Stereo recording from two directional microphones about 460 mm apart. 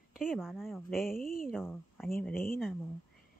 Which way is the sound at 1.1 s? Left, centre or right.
Centre.